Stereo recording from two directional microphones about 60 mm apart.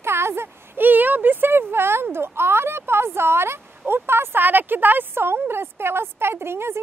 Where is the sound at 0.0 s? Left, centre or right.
Right.